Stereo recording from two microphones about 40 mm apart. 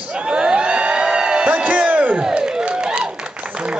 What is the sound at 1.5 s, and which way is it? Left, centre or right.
Speech, right.